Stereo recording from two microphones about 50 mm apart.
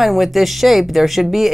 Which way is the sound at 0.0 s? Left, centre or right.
Centre.